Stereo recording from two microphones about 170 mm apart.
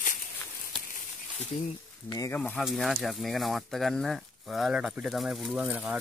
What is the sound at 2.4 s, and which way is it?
Speech, 5° left (ahead or behind).